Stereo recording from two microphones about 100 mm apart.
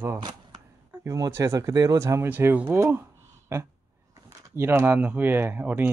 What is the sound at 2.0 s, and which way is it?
Speech, 25° right (ahead or behind).